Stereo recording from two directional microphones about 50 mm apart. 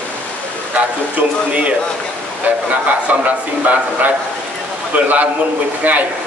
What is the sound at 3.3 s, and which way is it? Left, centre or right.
A man's voice, right.